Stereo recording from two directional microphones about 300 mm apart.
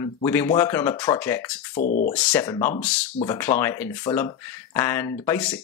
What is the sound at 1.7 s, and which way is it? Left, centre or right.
Speech, left.